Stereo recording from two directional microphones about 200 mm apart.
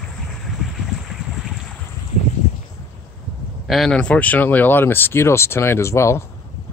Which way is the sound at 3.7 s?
Centre (ahead or behind).